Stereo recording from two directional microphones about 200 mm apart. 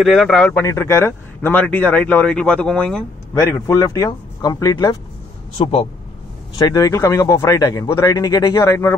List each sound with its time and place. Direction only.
0.0 s a man's voice: centre (ahead or behind); by 4.9 s 20° left (ahead or behind)
5.6 s speech: 30° left (ahead or behind)
6.6 s a man's voice: 15° left (ahead or behind)